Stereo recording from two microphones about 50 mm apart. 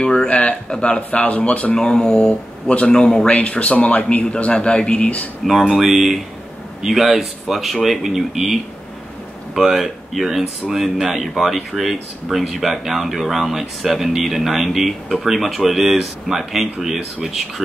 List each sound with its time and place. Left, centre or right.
0.0 s a sound: centre
0.3 s a man's voice: left
2.9 s speech: centre
3.3 s a man's voice: left
5.4 s speech: centre